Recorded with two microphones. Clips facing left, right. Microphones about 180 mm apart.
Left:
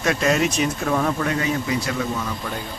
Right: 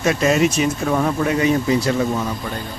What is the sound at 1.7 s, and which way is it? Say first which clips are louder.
Speech: right 6 dB; 30° right (ahead or behind).